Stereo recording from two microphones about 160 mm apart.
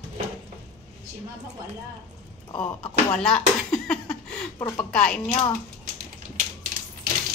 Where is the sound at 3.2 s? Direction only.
5° left (ahead or behind).